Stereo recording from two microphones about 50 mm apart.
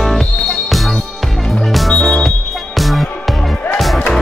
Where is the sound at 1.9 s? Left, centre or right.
Centre.